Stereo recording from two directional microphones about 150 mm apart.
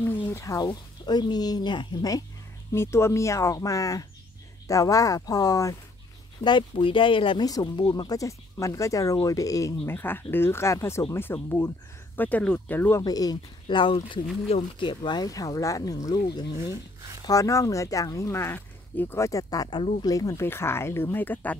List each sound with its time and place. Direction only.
0.3 s speech: 20° left (ahead or behind)
6.4 s speech: 35° left (ahead or behind); by 13.0 s 10° left (ahead or behind)
13.0 s speech: 25° left (ahead or behind)
17.3 s speech: 20° left (ahead or behind)